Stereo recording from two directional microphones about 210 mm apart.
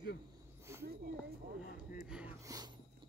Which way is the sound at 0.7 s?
15° right (ahead or behind).